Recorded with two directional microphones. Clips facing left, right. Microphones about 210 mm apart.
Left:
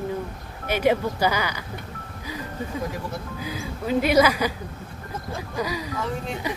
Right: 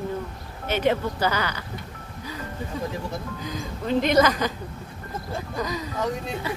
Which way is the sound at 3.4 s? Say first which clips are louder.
Left 1 dB; 10° left (ahead or behind).